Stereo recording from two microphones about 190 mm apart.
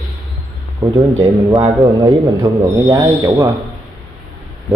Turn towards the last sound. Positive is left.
turn(degrees=-15)  # may be behind; listen again after turning